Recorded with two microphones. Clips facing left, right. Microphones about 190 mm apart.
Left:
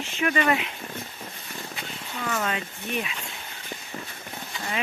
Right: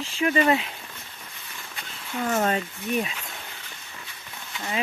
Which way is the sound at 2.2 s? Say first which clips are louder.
Right 5 dB; 40° right (ahead or behind).